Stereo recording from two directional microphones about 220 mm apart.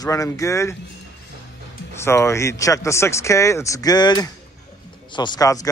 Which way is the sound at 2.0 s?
10° left (ahead or behind).